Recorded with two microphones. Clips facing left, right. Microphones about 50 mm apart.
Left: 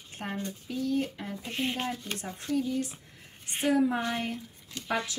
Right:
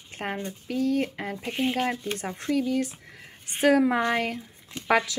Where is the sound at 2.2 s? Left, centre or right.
Right.